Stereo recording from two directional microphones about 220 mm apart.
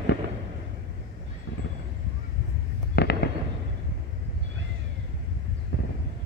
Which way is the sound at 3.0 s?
45° left (ahead or behind).